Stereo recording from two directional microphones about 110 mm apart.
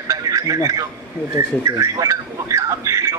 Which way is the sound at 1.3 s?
30° right (ahead or behind).